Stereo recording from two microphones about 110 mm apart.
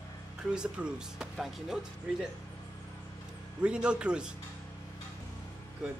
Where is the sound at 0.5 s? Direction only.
10° right (ahead or behind).